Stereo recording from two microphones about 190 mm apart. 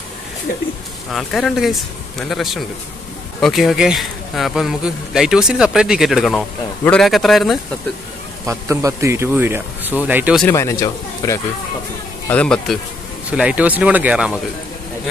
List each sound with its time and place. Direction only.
0.5 s speech: 45° left (ahead or behind)
1.1 s speech: centre (ahead or behind)
8.5 s speech: 15° right (ahead or behind)
10.5 s speech: 15° left (ahead or behind)
13.3 s speech: 5° right (ahead or behind)